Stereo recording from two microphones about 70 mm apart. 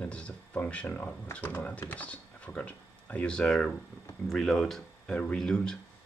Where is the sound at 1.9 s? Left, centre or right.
Centre.